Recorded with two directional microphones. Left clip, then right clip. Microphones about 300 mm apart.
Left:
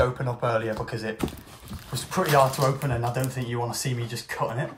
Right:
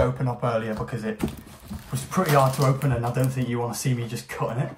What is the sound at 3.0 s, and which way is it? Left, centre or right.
Speech, centre.